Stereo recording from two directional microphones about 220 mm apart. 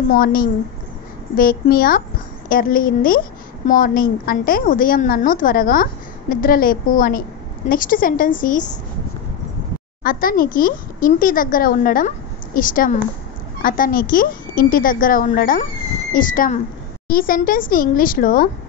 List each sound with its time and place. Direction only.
0.1 s a woman's voice: 40° left (ahead or behind)
10.0 s a woman's voice: 40° left (ahead or behind)